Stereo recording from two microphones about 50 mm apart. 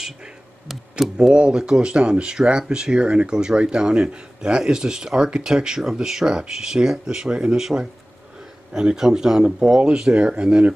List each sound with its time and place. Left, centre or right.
0.7 s speech: centre; by 10.7 s right